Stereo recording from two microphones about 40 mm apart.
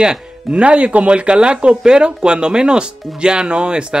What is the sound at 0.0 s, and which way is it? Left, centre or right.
Speech, right.